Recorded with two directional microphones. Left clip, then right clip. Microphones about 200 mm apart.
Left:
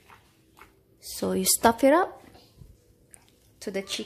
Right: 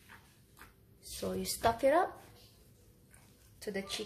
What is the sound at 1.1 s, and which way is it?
Speech, 55° left (ahead or behind).